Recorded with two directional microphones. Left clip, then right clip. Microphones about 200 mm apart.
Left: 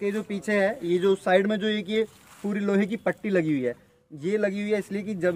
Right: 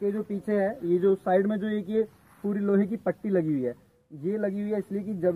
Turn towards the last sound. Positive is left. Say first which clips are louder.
# left 1 dB
turn(degrees=15)  # may be behind; listen again after turning